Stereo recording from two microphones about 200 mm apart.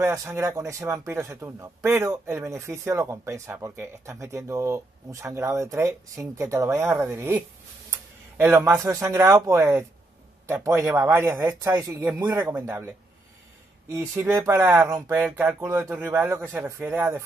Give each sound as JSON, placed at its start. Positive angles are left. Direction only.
{"t": 0.0, "sound": "a man's voice", "side_deg": -15}
{"t": 13.9, "sound": "a man's voice", "side_deg": -10}